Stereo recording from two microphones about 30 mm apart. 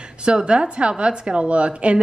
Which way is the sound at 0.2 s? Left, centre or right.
Right.